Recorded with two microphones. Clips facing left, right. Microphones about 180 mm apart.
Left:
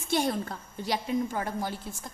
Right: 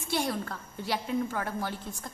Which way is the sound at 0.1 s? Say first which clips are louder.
Left 3 dB; 20° left (ahead or behind).